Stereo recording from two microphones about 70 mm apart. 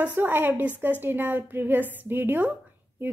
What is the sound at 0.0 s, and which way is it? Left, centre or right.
A woman's voice, right.